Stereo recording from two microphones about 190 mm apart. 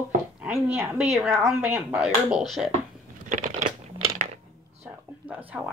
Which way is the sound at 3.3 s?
40° right (ahead or behind).